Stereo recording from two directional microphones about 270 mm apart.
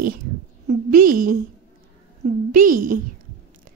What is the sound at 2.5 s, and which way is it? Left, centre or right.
Speech, right.